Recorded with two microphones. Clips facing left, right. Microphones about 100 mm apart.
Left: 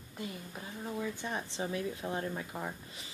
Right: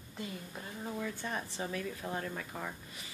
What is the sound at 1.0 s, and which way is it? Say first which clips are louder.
Speech: left 2 dB; 20° left (ahead or behind).